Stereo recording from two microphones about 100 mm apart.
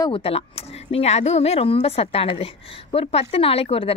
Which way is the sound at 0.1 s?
70° left (ahead or behind).